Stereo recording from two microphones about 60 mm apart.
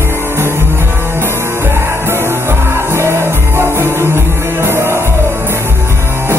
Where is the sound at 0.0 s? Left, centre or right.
Right.